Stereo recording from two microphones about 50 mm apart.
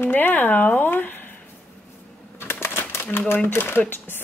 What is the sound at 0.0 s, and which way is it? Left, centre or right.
Speech, left.